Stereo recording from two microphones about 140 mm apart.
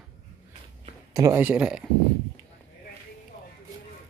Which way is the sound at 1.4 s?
10° right (ahead or behind).